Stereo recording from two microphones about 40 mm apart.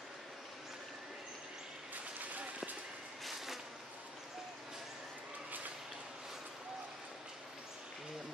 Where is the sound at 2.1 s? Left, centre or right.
Right.